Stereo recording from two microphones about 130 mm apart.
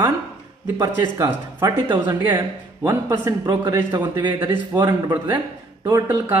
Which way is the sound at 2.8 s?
30° right (ahead or behind).